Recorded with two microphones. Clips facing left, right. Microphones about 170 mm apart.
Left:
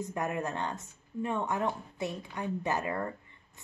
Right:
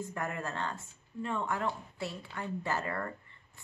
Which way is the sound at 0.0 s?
20° left (ahead or behind).